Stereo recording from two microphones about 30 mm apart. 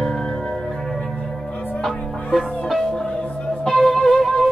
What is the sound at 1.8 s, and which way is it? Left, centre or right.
Music, centre.